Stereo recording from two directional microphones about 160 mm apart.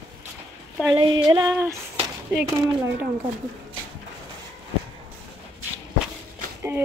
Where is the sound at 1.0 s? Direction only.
30° right (ahead or behind).